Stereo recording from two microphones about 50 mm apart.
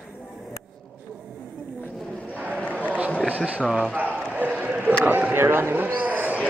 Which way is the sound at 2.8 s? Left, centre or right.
Right.